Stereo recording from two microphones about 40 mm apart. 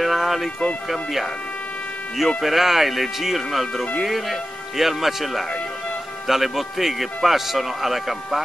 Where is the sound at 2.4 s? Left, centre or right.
Centre.